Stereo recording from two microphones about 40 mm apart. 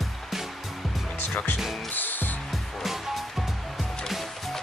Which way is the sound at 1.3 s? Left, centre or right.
Left.